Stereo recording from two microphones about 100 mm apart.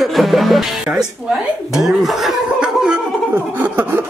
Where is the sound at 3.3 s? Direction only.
20° right (ahead or behind).